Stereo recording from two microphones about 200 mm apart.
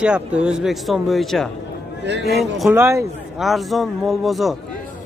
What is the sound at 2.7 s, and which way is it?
Speech, 10° right (ahead or behind).